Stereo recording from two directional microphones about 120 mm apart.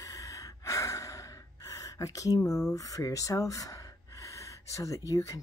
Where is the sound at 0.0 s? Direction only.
25° left (ahead or behind).